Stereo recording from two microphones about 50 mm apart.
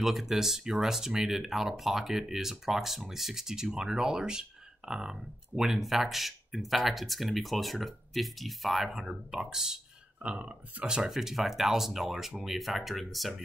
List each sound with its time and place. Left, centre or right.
0.0 s speech: centre
10.2 s speech: right
11.0 s speech: centre